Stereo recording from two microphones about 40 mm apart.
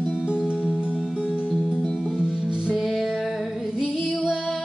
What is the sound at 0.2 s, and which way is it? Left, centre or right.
Music, right.